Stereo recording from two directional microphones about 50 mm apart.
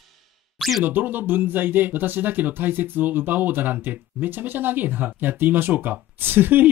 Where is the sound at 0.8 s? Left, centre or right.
Right.